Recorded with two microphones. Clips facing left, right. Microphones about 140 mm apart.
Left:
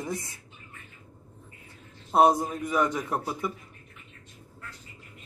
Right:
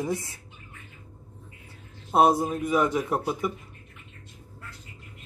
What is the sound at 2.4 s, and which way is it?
Speech, 20° right (ahead or behind).